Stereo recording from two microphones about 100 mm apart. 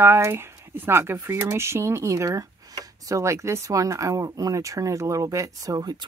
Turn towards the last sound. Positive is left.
turn(degrees=-40)  # may be behind; listen again after turning